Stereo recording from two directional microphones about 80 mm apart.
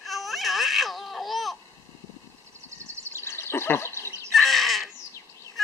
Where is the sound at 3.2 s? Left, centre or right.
Left.